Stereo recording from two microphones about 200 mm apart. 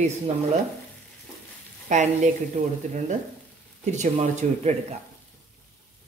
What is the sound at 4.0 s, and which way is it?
Speech, 35° right (ahead or behind).